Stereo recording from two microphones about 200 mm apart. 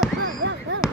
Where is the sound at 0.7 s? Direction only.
65° right (ahead or behind).